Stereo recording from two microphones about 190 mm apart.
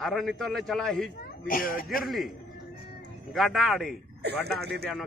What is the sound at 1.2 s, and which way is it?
Speech, 50° left (ahead or behind).